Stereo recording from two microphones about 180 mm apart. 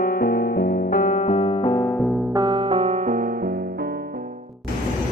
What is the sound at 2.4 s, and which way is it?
Music, 30° right (ahead or behind).